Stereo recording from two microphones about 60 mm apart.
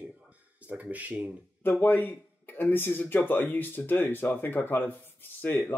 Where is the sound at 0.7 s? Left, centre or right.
Right.